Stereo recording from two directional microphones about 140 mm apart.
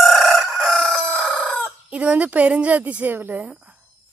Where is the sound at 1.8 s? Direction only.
10° right (ahead or behind).